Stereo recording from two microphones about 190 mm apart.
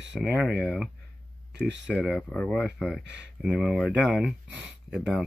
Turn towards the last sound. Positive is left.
turn(degrees=-5)  # may be behind; listen again after turning